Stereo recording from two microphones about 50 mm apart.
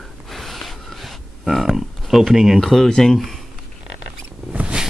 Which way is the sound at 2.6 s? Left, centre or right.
Centre.